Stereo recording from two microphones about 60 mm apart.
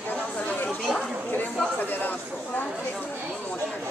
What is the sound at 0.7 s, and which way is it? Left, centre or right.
Chatter, centre.